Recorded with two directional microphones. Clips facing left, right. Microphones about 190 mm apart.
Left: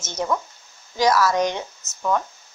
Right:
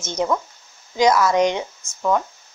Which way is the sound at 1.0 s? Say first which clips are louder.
Right 3 dB; 20° right (ahead or behind).